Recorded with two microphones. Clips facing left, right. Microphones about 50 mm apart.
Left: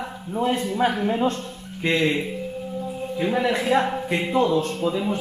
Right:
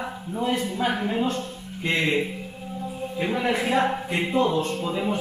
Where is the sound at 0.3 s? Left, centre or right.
Centre.